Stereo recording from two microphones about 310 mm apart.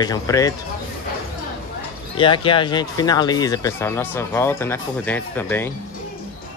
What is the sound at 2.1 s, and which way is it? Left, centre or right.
Speech, centre.